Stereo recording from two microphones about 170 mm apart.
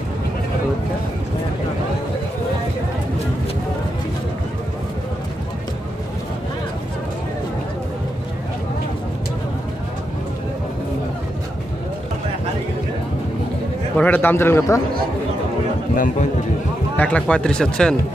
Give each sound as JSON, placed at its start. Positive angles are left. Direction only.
{"t": 13.9, "sound": "a man's voice", "side_deg": 10}
{"t": 15.9, "sound": "speech", "side_deg": 50}
{"t": 16.9, "sound": "speech", "side_deg": 10}